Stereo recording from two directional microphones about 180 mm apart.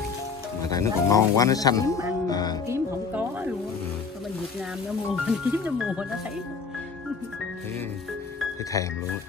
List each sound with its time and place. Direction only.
0.6 s speech: 20° left (ahead or behind)
2.7 s music: 10° right (ahead or behind)
5.2 s speech: 5° right (ahead or behind)